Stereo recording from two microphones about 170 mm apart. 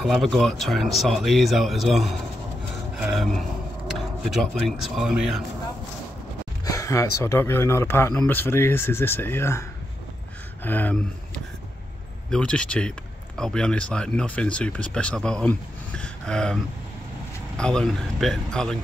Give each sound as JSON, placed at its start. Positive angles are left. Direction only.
{"t": 0.0, "sound": "speech", "side_deg": 0}
{"t": 6.6, "sound": "speech", "side_deg": 20}
{"t": 16.0, "sound": "a sound", "side_deg": 5}
{"t": 17.6, "sound": "speech", "side_deg": 5}